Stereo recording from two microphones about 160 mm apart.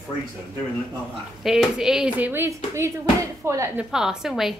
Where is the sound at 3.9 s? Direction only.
5° right (ahead or behind).